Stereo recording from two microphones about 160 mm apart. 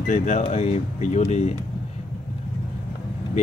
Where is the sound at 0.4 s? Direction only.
45° left (ahead or behind).